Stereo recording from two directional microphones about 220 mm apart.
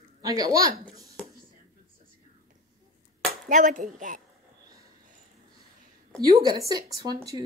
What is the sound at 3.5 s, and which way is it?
Speech, 35° right (ahead or behind).